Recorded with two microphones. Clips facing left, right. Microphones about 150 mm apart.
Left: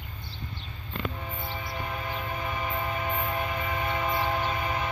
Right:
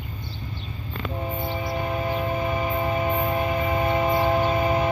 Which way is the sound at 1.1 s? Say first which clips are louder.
Right 8 dB; 25° right (ahead or behind).